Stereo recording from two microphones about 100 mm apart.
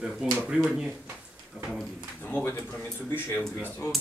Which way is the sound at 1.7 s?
5° right (ahead or behind).